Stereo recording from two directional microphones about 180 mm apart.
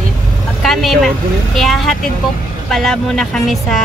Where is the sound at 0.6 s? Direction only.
Centre (ahead or behind).